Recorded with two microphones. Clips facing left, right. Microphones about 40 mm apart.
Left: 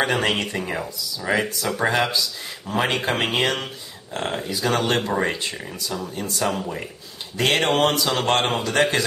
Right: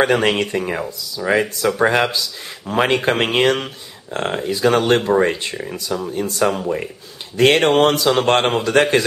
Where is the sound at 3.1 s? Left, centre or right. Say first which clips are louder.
Right 5 dB; right.